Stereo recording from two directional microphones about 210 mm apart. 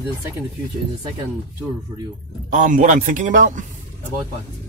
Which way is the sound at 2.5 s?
40° right (ahead or behind).